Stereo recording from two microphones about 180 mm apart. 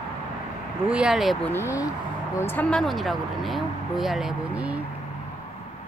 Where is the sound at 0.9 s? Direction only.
5° right (ahead or behind).